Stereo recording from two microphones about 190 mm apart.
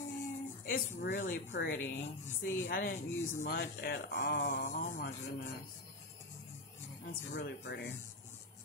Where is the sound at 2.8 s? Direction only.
45° left (ahead or behind).